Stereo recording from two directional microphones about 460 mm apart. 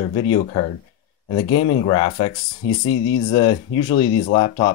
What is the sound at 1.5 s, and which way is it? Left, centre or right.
Speech, left.